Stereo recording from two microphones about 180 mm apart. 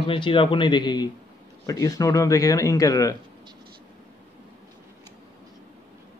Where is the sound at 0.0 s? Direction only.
30° left (ahead or behind).